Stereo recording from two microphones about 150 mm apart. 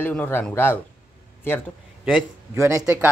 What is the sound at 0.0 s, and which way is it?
Speech, 10° left (ahead or behind).